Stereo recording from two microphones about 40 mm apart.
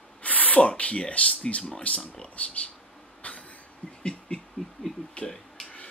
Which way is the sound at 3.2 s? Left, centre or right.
Left.